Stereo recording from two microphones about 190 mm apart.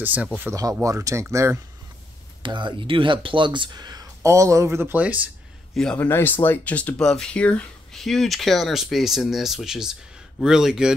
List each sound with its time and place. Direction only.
0.0 s speech: 10° right (ahead or behind)
2.4 s speech: 25° right (ahead or behind); by 5.3 s 10° right (ahead or behind)
5.8 s speech: 5° left (ahead or behind)